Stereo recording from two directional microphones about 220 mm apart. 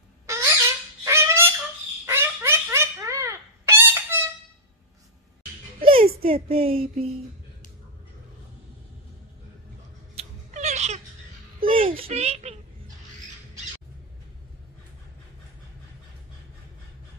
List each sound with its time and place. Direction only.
0.3 s owl: 15° right (ahead or behind)
1.0 s goose: 10° right (ahead or behind)
2.0 s a sound: 10° right (ahead or behind)
5.8 s music: 25° right (ahead or behind)
6.2 s speech: 25° right (ahead or behind)
10.1 s cat: 30° right (ahead or behind)
11.6 s a sound: 25° right (ahead or behind)